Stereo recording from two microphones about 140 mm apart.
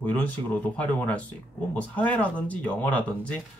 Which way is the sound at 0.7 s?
10° left (ahead or behind).